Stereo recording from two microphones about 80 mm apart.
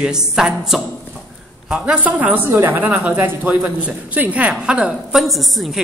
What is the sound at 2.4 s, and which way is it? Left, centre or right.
A woman's voice, right.